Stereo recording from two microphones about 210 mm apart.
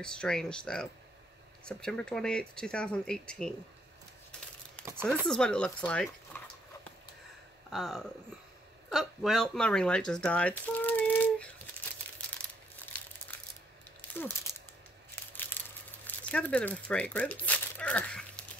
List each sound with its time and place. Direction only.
0.0 s speech: 5° left (ahead or behind)
5.2 s speech: 5° left (ahead or behind)
7.7 s speech: centre (ahead or behind)
15.3 s a sound: 10° left (ahead or behind)
16.1 s crumpling: 5° left (ahead or behind)